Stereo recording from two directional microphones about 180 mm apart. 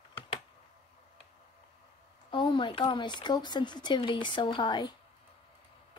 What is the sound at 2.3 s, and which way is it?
Speech, 25° left (ahead or behind).